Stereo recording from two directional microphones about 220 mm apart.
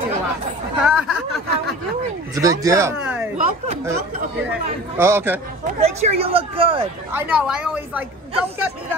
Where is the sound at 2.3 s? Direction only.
15° right (ahead or behind).